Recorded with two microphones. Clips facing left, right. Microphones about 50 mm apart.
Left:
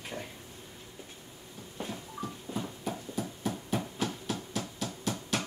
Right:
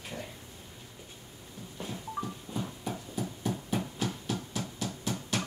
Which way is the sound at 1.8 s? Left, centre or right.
Left.